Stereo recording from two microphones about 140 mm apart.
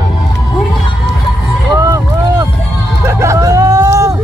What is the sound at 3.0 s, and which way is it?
Hubbub, 20° right (ahead or behind).